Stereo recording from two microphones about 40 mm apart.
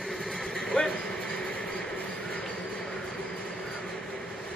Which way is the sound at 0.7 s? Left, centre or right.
Left.